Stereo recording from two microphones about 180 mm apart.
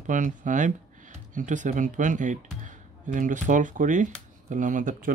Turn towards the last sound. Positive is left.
turn(degrees=-45)  # may be behind; listen again after turning